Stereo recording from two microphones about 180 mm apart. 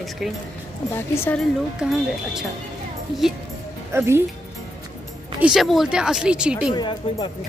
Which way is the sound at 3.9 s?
15° right (ahead or behind).